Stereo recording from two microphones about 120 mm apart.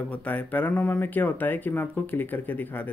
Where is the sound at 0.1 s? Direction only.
10° left (ahead or behind).